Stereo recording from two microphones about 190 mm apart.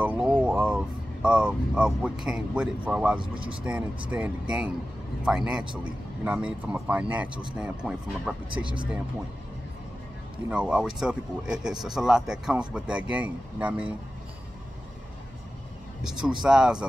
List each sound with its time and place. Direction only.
0.0 s vehicle: 10° right (ahead or behind)
3.2 s speech: 25° right (ahead or behind)
4.1 s speech: 5° right (ahead or behind)
10.5 s speech: 5° right (ahead or behind)
16.0 s speech: 5° right (ahead or behind)